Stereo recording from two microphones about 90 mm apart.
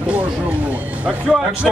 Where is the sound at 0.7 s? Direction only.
15° right (ahead or behind).